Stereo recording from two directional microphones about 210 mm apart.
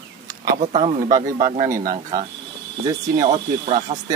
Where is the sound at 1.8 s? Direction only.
40° right (ahead or behind).